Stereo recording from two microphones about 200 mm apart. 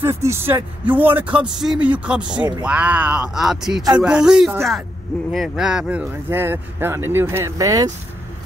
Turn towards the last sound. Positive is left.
turn(degrees=-15)  # may be behind; listen again after turning